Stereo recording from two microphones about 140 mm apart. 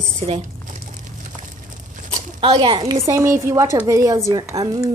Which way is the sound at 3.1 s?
20° right (ahead or behind).